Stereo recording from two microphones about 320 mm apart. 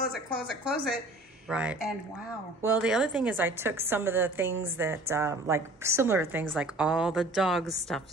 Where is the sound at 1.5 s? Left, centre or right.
Centre.